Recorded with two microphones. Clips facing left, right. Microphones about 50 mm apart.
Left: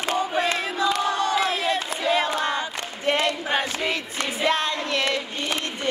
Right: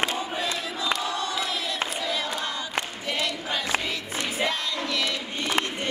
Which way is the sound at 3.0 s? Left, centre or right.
Left.